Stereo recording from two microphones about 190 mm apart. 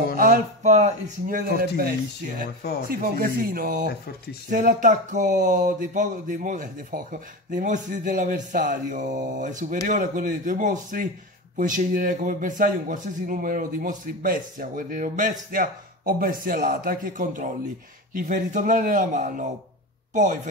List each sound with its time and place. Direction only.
0.2 s a man's voice: 45° right (ahead or behind)